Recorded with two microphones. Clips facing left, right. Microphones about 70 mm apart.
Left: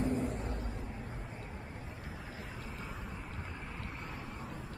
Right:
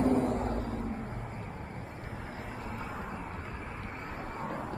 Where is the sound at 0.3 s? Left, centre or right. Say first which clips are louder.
Right 8 dB; right.